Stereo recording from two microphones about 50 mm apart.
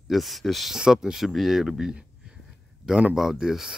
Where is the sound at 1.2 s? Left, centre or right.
Centre.